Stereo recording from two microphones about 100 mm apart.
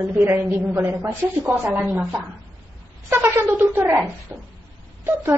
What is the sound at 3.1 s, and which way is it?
A woman's voice, 20° right (ahead or behind).